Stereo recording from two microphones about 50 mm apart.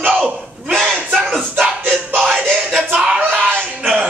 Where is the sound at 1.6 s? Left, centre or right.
Right.